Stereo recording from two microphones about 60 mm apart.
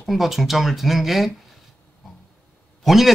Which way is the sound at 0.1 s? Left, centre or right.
Centre.